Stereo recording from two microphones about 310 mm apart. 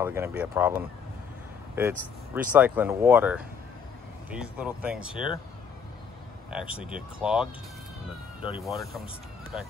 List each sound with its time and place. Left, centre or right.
0.0 s speech: centre
6.5 s speech: centre
8.4 s speech: centre
8.6 s speech: centre